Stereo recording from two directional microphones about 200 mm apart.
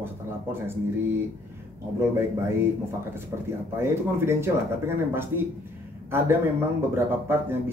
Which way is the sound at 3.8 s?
15° right (ahead or behind).